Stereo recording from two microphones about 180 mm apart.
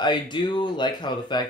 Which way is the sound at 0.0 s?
25° left (ahead or behind).